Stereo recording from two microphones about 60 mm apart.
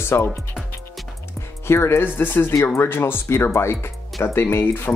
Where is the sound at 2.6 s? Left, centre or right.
Left.